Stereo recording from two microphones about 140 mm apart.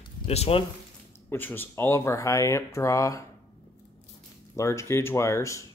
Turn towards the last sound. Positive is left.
turn(degrees=20)  # may be behind; listen again after turning